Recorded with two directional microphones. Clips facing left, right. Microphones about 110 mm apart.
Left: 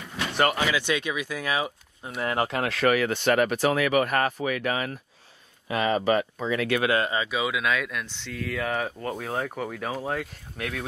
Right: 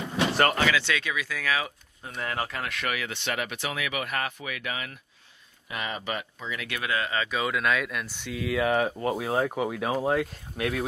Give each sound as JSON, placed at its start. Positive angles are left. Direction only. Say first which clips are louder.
{"t": 0.0, "sound": "slam", "louder": "right 6 dB", "side_deg": -25}
{"t": 0.4, "sound": "speech", "louder": "left 2 dB", "side_deg": 5}
{"t": 0.7, "sound": "speech", "louder": "left 1 dB", "side_deg": 20}
{"t": 2.6, "sound": "speech", "louder": "left 9 dB", "side_deg": 35}
{"t": 7.1, "sound": "speech", "louder": "left 1 dB", "side_deg": 15}